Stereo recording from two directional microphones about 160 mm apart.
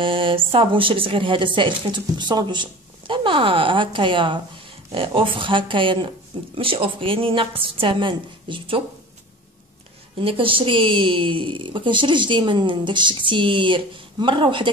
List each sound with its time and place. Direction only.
0.0 s speech: 35° right (ahead or behind)
10.2 s speech: 35° right (ahead or behind)